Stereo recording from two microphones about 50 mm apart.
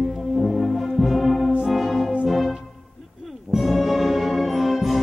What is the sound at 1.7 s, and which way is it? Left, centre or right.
Music, centre.